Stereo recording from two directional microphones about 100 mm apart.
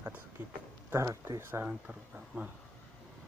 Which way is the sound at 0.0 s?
20° right (ahead or behind).